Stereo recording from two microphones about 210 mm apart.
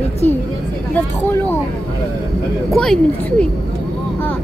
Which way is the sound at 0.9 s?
10° left (ahead or behind).